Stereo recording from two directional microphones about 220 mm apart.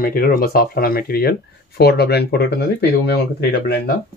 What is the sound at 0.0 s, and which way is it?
Speech, 40° left (ahead or behind).